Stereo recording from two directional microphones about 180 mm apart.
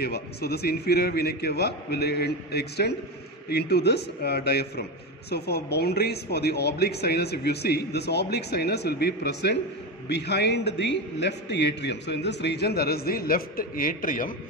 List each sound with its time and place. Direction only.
0.0 s a man's voice: 60° left (ahead or behind)